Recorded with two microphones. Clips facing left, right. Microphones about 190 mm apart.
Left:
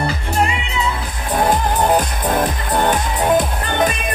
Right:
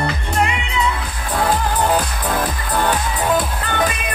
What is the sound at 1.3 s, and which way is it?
Music, 20° left (ahead or behind).